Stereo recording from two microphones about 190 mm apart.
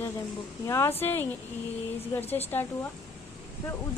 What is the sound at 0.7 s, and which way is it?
A woman's voice, 15° left (ahead or behind).